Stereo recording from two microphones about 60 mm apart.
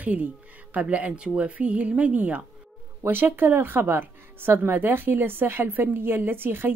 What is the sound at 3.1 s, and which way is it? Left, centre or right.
Speech, right.